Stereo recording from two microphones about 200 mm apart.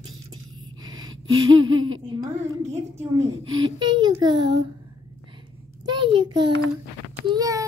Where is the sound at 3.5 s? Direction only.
80° right.